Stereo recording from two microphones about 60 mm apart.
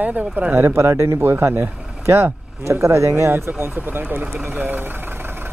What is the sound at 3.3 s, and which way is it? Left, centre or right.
Speech, right.